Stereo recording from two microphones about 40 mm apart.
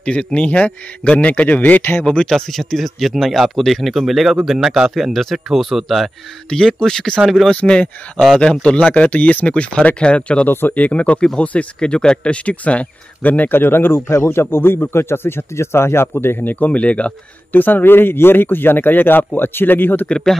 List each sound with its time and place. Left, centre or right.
0.0 s a man's voice: left
1.8 s a man's voice: left
2.2 s speech: centre
6.5 s speech: centre; by 13.5 s left
13.5 s speech: left
16.2 s speech: left
16.4 s speech: left
17.5 s a man's voice: left
20.1 s speech: centre